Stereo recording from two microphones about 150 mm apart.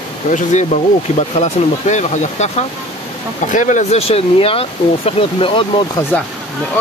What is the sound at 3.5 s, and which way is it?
Speech, 55° left (ahead or behind).